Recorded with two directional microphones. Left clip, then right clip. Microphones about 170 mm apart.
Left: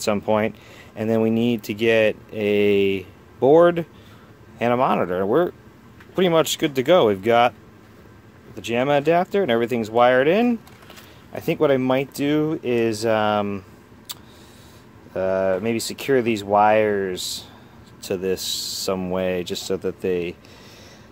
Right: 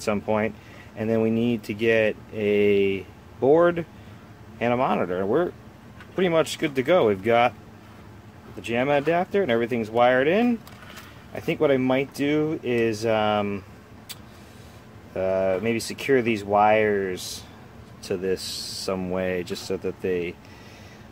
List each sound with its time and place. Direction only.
0.0 s speech: 45° left (ahead or behind)
8.6 s speech: 40° left (ahead or behind)
15.1 s speech: 40° left (ahead or behind)